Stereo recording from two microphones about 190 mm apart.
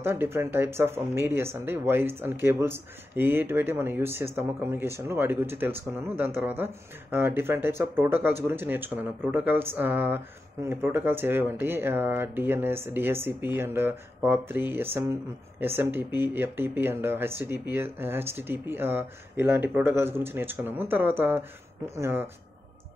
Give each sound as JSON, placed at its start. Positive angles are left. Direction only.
{"t": 0.0, "sound": "speech", "side_deg": -10}